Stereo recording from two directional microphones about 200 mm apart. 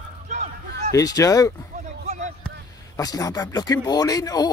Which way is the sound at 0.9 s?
15° left (ahead or behind).